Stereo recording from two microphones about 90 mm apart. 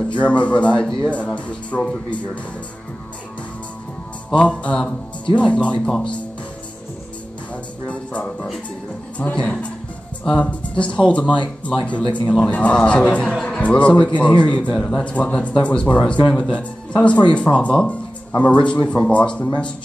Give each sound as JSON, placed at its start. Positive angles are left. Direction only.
{"t": 0.2, "sound": "speech", "side_deg": 15}
{"t": 4.3, "sound": "speech", "side_deg": 15}
{"t": 7.8, "sound": "bow-wow", "side_deg": 15}
{"t": 9.2, "sound": "speech", "side_deg": 10}
{"t": 12.0, "sound": "a man's voice", "side_deg": 60}
{"t": 12.4, "sound": "speech", "side_deg": 15}